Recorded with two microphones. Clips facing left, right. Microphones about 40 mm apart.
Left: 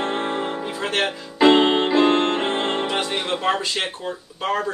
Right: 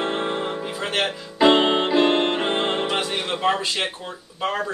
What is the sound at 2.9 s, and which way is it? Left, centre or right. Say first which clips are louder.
Music: left 1 dB; centre.